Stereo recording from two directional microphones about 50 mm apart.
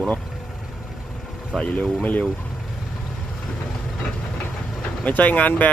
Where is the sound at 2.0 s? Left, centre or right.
Left.